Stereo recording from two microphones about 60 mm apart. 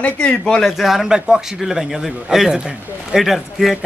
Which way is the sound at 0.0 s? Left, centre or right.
Left.